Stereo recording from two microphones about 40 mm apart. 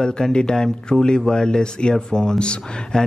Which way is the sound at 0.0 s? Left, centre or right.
Centre.